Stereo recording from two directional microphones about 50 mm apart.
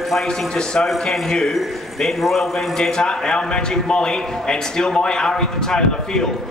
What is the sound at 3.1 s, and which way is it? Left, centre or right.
A man's voice, centre.